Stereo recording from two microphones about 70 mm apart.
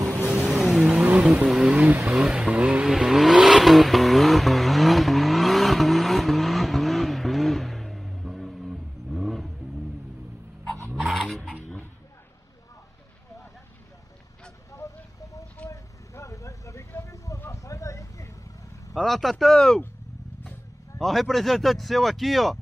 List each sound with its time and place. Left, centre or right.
0.3 s vehicle: centre
0.8 s vehicle: centre
1.3 s vehicle: centre
2.0 s speech: centre
2.9 s vehicle: centre
11.0 s fowl: centre
14.7 s vehicle: left
17.0 s a sound: left
18.9 s a sound: centre
21.0 s speech: centre